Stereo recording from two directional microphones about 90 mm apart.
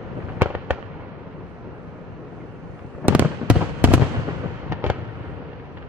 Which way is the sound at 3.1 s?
15° right (ahead or behind).